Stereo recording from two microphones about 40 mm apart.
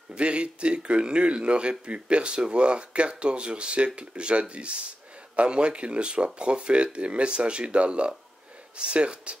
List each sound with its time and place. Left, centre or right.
0.1 s speech: right